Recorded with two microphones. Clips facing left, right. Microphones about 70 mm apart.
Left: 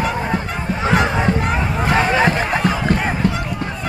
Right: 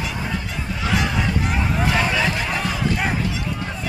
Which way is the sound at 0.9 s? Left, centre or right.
Left.